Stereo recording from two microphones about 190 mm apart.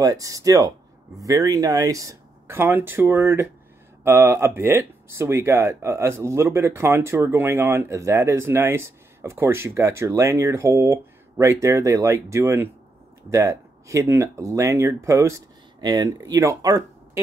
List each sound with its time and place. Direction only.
0.0 s speech: 20° right (ahead or behind)